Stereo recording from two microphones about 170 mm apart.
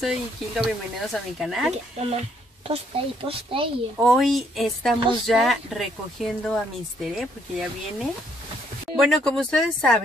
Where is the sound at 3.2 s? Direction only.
30° right (ahead or behind).